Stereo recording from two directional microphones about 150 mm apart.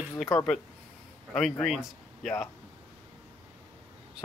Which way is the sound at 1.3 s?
Centre (ahead or behind).